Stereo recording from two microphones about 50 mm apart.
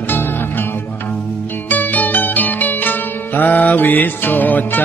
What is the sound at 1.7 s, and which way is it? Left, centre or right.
Music, left.